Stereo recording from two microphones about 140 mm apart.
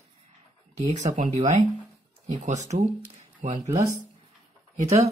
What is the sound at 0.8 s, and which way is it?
Speech, 60° right (ahead or behind).